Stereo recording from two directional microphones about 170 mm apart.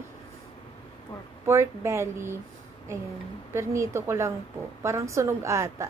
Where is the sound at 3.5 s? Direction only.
15° right (ahead or behind).